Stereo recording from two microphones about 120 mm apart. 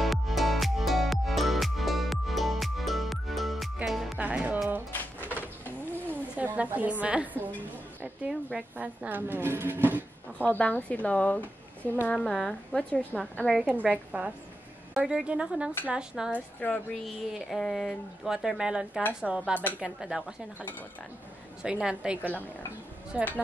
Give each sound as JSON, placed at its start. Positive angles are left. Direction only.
{"t": 0.0, "sound": "music", "side_deg": 0}
{"t": 4.2, "sound": "music", "side_deg": -10}
{"t": 6.3, "sound": "a woman's voice", "side_deg": -10}
{"t": 10.5, "sound": "a woman's voice", "side_deg": 10}
{"t": 13.7, "sound": "speech", "side_deg": -10}
{"t": 16.3, "sound": "speech", "side_deg": 15}
{"t": 17.0, "sound": "speech", "side_deg": 0}
{"t": 21.6, "sound": "speech", "side_deg": -10}